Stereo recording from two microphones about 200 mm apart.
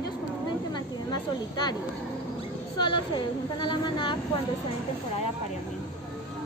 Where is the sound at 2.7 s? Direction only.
25° left (ahead or behind).